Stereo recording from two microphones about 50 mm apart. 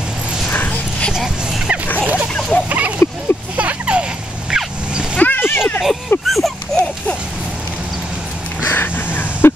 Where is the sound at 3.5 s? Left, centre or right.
Right.